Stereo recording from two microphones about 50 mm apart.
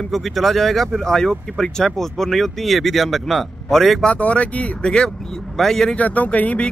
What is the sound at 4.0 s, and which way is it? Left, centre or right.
Speech, left.